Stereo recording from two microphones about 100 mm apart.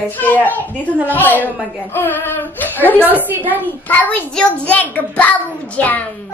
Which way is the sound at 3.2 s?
20° right (ahead or behind).